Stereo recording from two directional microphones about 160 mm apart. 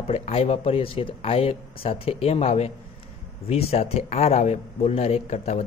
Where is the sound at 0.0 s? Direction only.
40° left (ahead or behind).